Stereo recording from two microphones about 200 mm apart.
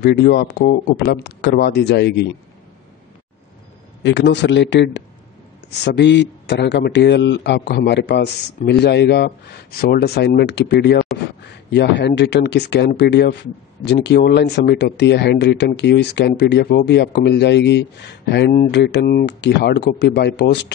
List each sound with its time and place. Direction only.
0.0 s speech: 55° left (ahead or behind)
4.0 s speech: 60° left (ahead or behind)
11.4 s a sound: 55° left (ahead or behind)
12.2 s speech: 60° left (ahead or behind)